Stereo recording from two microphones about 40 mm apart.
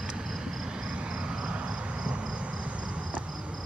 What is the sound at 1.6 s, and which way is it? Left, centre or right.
Cricket, right.